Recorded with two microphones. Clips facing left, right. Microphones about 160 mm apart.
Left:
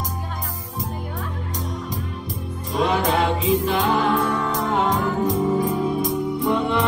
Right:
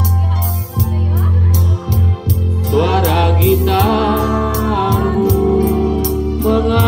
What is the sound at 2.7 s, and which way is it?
Music, 85° right.